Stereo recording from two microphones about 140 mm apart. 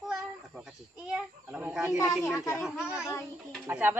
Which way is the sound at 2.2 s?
20° left (ahead or behind).